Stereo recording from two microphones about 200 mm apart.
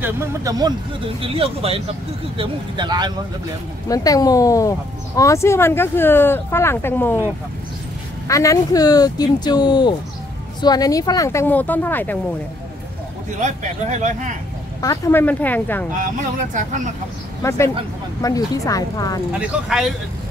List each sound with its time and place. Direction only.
0.0 s speech: 15° right (ahead or behind)
3.9 s speech: 20° left (ahead or behind)
8.3 s speech: 15° left (ahead or behind)
13.4 s speech: 35° right (ahead or behind)
14.8 s speech: 15° left (ahead or behind)
16.5 s speech: 40° right (ahead or behind)
17.4 s speech: 15° left (ahead or behind)
19.3 s speech: 5° right (ahead or behind)